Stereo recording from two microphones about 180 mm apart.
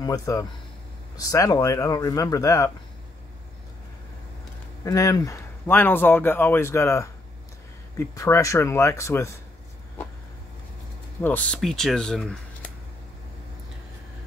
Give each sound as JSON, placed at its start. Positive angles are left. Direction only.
{"t": 0.0, "sound": "speech", "side_deg": 20}
{"t": 4.8, "sound": "speech", "side_deg": 20}
{"t": 11.1, "sound": "speech", "side_deg": 10}